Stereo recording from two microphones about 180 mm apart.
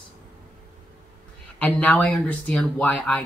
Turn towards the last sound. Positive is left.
turn(degrees=5)  # may be behind; listen again after turning